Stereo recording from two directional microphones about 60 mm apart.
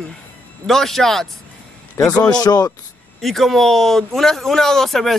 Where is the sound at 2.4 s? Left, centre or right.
Left.